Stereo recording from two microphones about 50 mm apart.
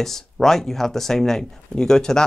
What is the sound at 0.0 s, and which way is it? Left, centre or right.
Speech, centre.